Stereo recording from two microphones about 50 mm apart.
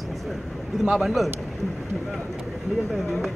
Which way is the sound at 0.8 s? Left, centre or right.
Centre.